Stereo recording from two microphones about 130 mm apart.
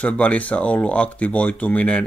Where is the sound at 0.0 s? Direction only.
10° left (ahead or behind).